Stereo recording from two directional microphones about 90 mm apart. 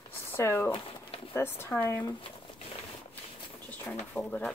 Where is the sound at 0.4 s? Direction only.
30° left (ahead or behind).